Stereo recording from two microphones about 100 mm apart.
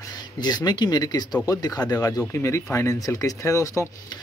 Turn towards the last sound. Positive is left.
turn(degrees=30)  # may be behind; listen again after turning